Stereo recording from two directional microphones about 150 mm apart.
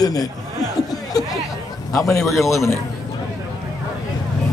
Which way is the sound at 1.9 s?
20° left (ahead or behind).